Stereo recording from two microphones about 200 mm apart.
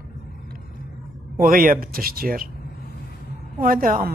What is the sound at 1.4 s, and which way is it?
A man's voice, 45° right (ahead or behind).